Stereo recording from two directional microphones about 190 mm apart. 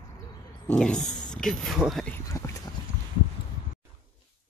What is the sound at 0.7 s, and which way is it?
Speech, 5° left (ahead or behind).